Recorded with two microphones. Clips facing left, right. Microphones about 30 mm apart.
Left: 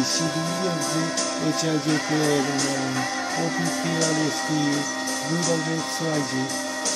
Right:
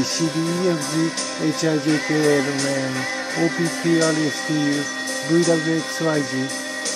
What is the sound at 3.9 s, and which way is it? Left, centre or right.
Music, right.